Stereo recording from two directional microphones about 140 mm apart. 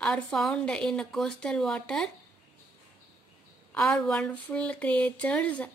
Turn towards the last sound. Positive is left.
turn(degrees=10)  # may be behind; listen again after turning